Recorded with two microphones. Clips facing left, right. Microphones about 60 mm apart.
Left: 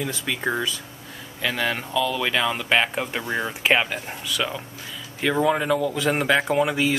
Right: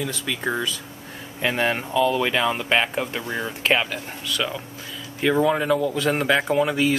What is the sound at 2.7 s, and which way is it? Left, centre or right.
Speech, centre.